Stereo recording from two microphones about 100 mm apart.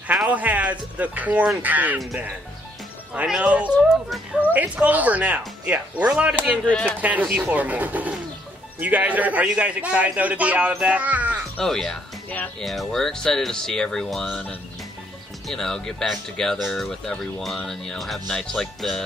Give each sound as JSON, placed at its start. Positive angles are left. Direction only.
{"t": 0.1, "sound": "a man's voice", "side_deg": -15}
{"t": 3.2, "sound": "a man's voice", "side_deg": -15}
{"t": 6.6, "sound": "speech", "side_deg": 10}
{"t": 7.0, "sound": "a man's voice", "side_deg": -15}
{"t": 11.5, "sound": "speech", "side_deg": 5}
{"t": 15.4, "sound": "speech", "side_deg": 5}